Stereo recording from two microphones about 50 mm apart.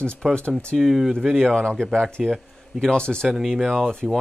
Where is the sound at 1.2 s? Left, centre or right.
Centre.